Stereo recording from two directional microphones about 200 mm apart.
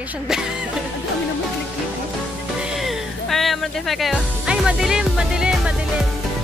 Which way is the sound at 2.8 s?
Centre (ahead or behind).